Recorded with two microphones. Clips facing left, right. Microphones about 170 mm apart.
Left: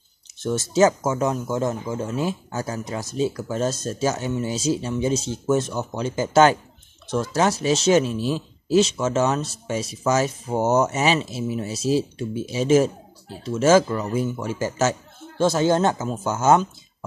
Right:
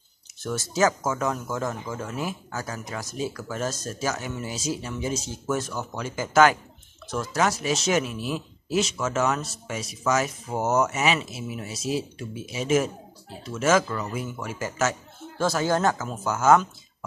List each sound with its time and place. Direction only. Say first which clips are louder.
0.4 s speech: left 5 dB; 25° left (ahead or behind)